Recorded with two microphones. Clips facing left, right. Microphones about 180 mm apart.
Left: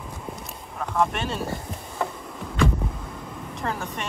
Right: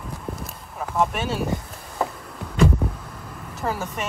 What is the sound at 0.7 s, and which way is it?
Speech, 5° right (ahead or behind).